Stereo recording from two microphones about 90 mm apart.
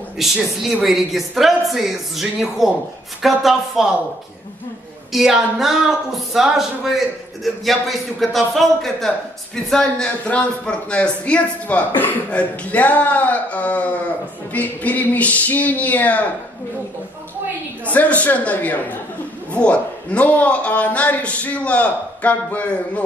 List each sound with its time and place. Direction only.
0.2 s speech: 5° right (ahead or behind)
5.1 s a man's voice: 5° right (ahead or behind); by 16.3 s 15° left (ahead or behind)
17.8 s a man's voice: 15° left (ahead or behind)